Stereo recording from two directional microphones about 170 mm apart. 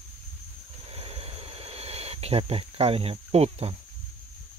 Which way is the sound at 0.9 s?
35° right (ahead or behind).